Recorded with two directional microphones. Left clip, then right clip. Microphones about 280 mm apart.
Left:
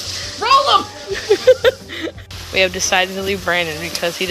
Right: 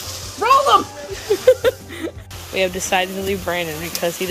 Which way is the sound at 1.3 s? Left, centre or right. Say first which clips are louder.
Left 3 dB; centre.